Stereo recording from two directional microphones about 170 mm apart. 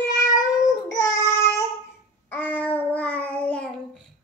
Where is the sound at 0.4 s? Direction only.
20° left (ahead or behind).